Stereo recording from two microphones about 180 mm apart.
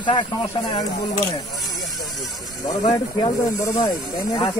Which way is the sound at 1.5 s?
Centre (ahead or behind).